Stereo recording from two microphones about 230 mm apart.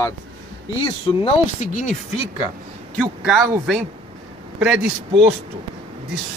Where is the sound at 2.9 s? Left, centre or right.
Centre.